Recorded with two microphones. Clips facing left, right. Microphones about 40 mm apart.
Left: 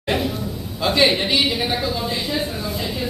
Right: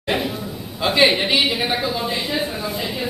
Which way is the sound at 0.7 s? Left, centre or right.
Centre.